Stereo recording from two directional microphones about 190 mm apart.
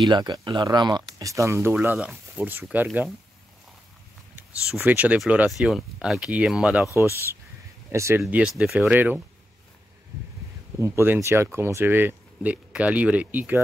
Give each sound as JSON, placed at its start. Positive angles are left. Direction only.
{"t": 0.1, "sound": "speech", "side_deg": -20}
{"t": 4.4, "sound": "speech", "side_deg": -5}
{"t": 7.9, "sound": "speech", "side_deg": -15}
{"t": 10.8, "sound": "speech", "side_deg": -15}